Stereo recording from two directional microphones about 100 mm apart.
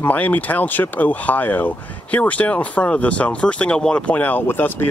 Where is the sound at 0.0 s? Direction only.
15° left (ahead or behind).